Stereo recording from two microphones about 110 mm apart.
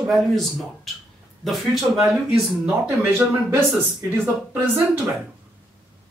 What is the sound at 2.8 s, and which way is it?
Speech, 20° right (ahead or behind).